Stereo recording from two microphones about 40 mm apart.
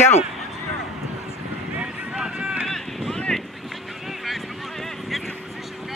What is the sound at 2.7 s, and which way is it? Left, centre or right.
Boat, centre.